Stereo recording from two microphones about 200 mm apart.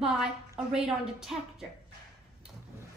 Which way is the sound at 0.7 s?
Centre (ahead or behind).